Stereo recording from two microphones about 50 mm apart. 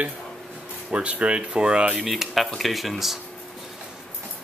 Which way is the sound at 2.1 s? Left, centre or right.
Centre.